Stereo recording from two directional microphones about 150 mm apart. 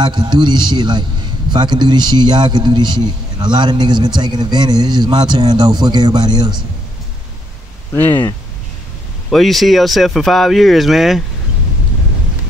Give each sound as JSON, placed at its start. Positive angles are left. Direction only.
{"t": 0.0, "sound": "a man's voice", "side_deg": -30}
{"t": 8.0, "sound": "speech", "side_deg": 10}
{"t": 9.3, "sound": "speech", "side_deg": 0}